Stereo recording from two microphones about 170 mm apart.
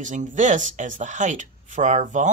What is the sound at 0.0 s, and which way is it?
Speech, 45° right (ahead or behind).